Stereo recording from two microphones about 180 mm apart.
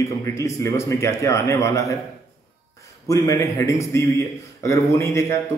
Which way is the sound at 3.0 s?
15° left (ahead or behind).